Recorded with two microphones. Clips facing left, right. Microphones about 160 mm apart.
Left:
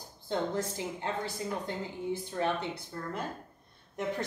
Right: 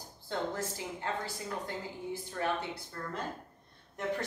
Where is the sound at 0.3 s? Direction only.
20° left (ahead or behind).